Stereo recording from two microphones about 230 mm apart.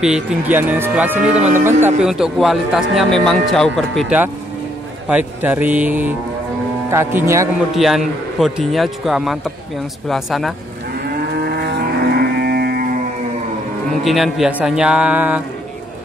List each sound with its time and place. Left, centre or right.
0.0 s speech: centre
1.4 s speech: right
1.8 s a man's voice: centre
7.7 s a man's voice: centre
11.2 s livestock: right
14.0 s a man's voice: centre